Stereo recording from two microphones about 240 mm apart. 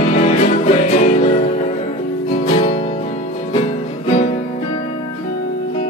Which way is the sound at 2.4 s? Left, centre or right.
Left.